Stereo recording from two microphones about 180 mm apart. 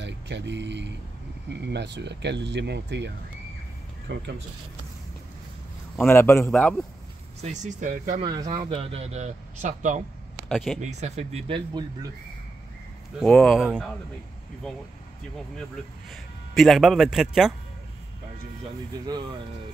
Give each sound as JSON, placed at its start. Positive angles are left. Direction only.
{"t": 0.0, "sound": "speech", "side_deg": -75}
{"t": 4.1, "sound": "speech", "side_deg": -75}
{"t": 6.0, "sound": "a man's voice", "side_deg": 15}
{"t": 7.4, "sound": "speech", "side_deg": -45}
{"t": 8.2, "sound": "speech", "side_deg": -25}
{"t": 10.5, "sound": "a man's voice", "side_deg": 0}
{"t": 10.8, "sound": "speech", "side_deg": -40}
{"t": 13.2, "sound": "a man's voice", "side_deg": 5}
{"t": 16.1, "sound": "a man's voice", "side_deg": 0}
{"t": 19.0, "sound": "speech", "side_deg": -25}